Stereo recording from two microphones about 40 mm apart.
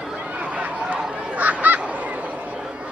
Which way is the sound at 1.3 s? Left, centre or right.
Right.